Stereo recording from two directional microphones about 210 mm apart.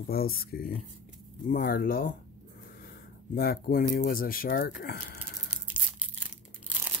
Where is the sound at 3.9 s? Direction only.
45° left (ahead or behind).